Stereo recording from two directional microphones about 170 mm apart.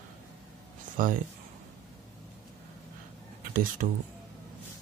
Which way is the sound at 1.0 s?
55° right (ahead or behind).